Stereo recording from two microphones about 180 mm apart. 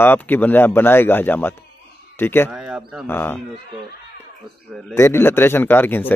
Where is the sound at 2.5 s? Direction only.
5° right (ahead or behind).